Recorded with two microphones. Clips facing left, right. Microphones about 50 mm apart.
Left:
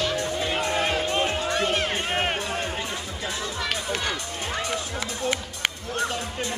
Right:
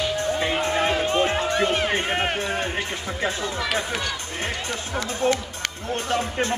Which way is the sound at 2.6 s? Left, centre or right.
Right.